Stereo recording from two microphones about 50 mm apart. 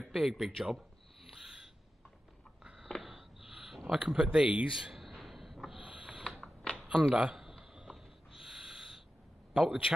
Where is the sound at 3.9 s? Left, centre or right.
Centre.